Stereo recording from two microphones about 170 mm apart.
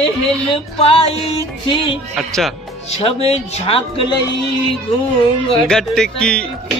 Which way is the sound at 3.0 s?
40° left (ahead or behind).